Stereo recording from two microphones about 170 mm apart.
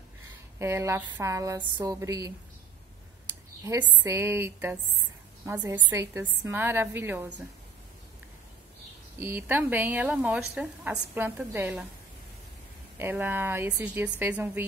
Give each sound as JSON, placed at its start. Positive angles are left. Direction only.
{"t": 0.6, "sound": "a woman's voice", "side_deg": -15}
{"t": 3.6, "sound": "a woman's voice", "side_deg": -25}
{"t": 9.2, "sound": "speech", "side_deg": -10}
{"t": 12.9, "sound": "speech", "side_deg": -10}